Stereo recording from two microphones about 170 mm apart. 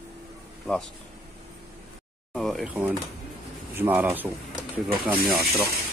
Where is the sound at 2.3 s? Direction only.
Centre (ahead or behind).